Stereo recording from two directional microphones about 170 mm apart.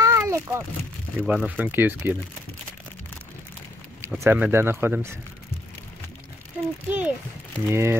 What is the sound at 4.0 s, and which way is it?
Speech, 15° right (ahead or behind).